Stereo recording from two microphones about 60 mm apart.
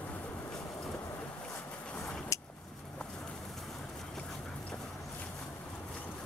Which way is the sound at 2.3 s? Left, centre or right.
Left.